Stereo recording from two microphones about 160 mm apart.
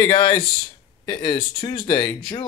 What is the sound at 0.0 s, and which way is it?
Speech, 25° left (ahead or behind).